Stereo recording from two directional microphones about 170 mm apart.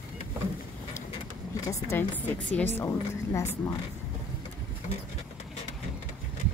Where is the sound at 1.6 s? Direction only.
15° left (ahead or behind).